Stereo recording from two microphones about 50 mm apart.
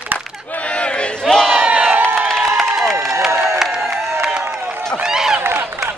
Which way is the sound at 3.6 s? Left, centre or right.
Centre.